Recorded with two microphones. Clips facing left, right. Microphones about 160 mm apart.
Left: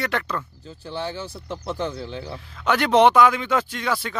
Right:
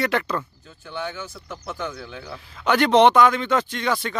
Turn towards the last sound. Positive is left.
turn(degrees=5)  # may be behind; listen again after turning